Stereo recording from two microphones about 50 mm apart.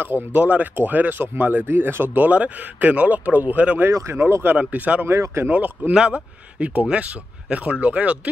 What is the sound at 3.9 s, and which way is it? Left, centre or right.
Speech, right.